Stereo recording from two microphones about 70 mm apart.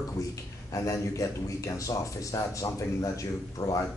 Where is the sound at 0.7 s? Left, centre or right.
Left.